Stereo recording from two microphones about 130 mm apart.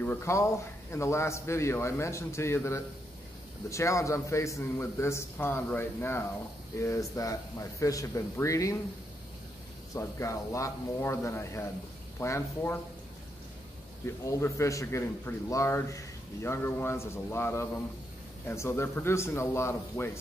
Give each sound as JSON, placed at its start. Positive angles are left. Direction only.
{"t": 0.0, "sound": "a man's voice", "side_deg": 20}
{"t": 9.9, "sound": "a man's voice", "side_deg": 20}
{"t": 14.0, "sound": "a man's voice", "side_deg": 20}